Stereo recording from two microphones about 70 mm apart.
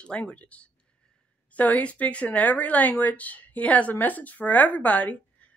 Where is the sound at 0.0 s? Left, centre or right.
Centre.